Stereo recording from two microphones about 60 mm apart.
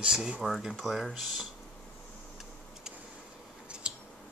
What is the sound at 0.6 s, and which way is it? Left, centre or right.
Speech, centre.